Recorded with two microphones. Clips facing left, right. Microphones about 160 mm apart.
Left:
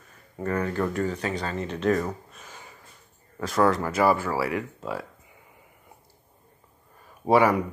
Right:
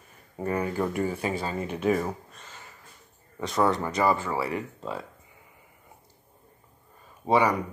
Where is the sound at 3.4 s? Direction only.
Centre (ahead or behind).